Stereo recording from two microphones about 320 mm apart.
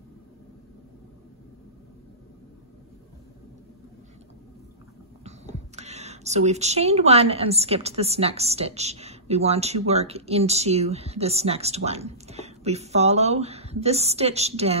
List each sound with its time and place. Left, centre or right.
5.8 s speech: right